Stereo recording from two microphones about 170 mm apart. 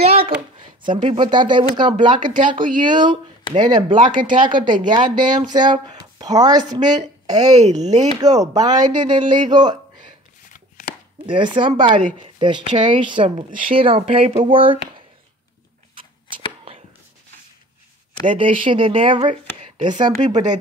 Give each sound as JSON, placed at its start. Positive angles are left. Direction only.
{"t": 0.0, "sound": "a sound", "side_deg": -35}
{"t": 0.6, "sound": "speech", "side_deg": -30}
{"t": 2.6, "sound": "speech", "side_deg": -55}
{"t": 2.9, "sound": "speech", "side_deg": -25}
{"t": 7.6, "sound": "speech", "side_deg": -40}
{"t": 8.2, "sound": "speech", "side_deg": -20}
{"t": 10.5, "sound": "chopping", "side_deg": 50}
{"t": 11.2, "sound": "speech", "side_deg": -30}
{"t": 18.3, "sound": "speech", "side_deg": -30}